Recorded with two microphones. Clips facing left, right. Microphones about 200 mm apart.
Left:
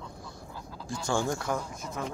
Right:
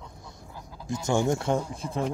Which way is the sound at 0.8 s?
20° right (ahead or behind).